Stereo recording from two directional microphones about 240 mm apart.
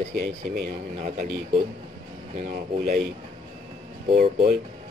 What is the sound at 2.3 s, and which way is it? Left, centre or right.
Speech, right.